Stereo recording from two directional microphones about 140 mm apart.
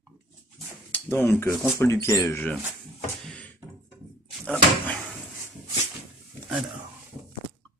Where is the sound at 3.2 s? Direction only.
5° left (ahead or behind).